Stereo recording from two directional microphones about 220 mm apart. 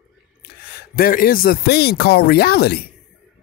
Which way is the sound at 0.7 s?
40° left (ahead or behind).